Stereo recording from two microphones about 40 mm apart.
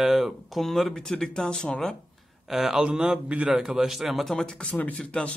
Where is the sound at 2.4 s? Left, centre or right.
Centre.